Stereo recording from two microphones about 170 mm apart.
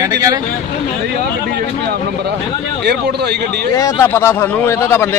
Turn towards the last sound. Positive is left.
turn(degrees=15)  # may be behind; listen again after turning